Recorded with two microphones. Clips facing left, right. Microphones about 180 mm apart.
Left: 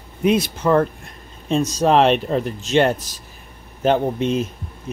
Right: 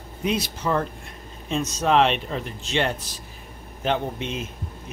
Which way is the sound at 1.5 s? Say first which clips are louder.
Left 5 dB; 35° left (ahead or behind).